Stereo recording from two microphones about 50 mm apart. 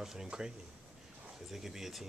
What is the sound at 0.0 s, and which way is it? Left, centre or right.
Speech, centre.